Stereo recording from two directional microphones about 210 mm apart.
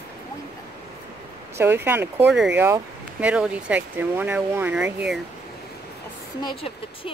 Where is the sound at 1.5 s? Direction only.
10° right (ahead or behind).